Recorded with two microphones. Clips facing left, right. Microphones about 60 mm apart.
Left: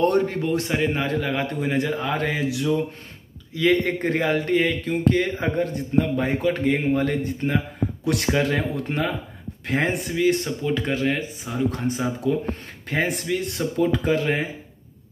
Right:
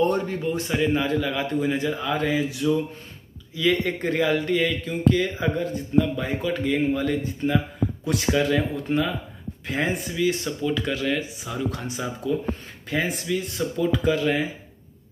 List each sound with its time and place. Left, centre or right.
0.0 s a man's voice: left
3.5 s a man's voice: left
5.0 s a man's voice: left
8.0 s a man's voice: left
12.9 s a man's voice: left
13.9 s speech: left